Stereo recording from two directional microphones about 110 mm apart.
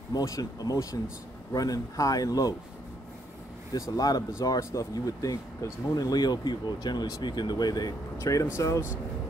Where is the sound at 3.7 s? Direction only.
35° left (ahead or behind).